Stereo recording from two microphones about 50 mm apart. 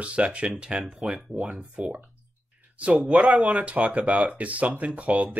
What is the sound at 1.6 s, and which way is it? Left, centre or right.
Speech, right.